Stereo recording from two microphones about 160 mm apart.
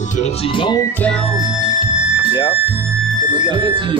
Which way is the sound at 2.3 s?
30° left (ahead or behind).